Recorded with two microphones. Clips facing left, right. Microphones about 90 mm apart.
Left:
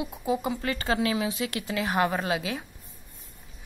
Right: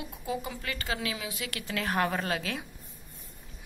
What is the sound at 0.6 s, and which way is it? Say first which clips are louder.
A woman's voice: left 7 dB; 35° left (ahead or behind).